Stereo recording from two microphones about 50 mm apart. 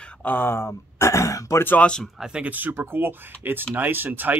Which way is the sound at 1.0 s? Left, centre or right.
Left.